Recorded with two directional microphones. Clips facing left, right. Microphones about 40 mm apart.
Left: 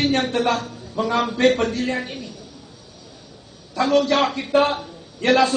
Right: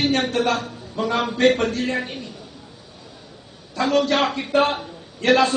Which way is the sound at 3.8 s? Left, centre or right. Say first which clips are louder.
Left 1 dB; centre.